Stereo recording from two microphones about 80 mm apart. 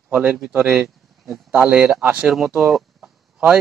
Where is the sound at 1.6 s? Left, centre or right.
Centre.